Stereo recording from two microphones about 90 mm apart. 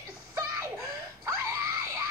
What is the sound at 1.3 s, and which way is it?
Baby cry, 35° right (ahead or behind).